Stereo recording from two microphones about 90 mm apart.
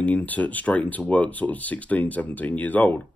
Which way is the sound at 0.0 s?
15° left (ahead or behind).